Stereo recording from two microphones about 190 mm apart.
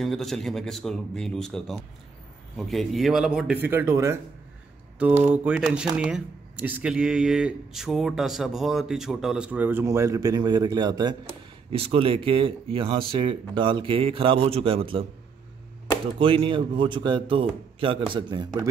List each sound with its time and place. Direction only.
0.0 s speech: centre (ahead or behind); by 4.2 s 15° right (ahead or behind)
5.2 s speech: 5° right (ahead or behind); by 15.0 s 30° right (ahead or behind)
16.2 s speech: 30° right (ahead or behind)